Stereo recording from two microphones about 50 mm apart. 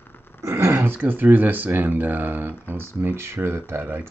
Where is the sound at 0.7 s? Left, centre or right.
Right.